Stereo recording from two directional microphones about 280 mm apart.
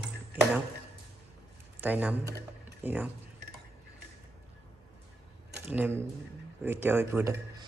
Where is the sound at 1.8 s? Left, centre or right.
Centre.